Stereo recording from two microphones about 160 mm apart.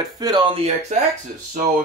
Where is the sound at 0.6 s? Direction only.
45° right (ahead or behind).